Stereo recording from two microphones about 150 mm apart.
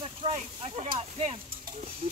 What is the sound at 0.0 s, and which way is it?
Speech, 40° right (ahead or behind).